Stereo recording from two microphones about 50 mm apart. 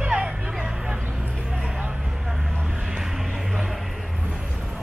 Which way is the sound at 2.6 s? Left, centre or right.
Centre.